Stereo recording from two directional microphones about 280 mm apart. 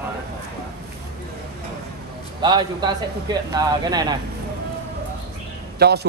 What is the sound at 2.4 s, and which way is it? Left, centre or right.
Speech, centre.